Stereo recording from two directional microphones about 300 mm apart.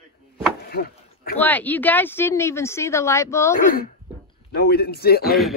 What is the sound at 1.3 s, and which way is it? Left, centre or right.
Speech, centre.